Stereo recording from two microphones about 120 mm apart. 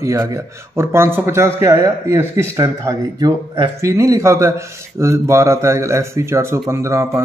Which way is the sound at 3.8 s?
25° right (ahead or behind).